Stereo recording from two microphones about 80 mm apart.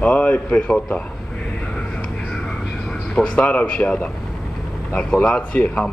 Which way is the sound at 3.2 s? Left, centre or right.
Centre.